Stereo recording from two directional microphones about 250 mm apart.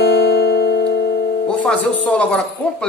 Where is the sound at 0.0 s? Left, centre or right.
Left.